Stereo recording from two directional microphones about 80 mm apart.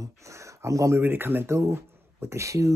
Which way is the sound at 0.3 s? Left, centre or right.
Right.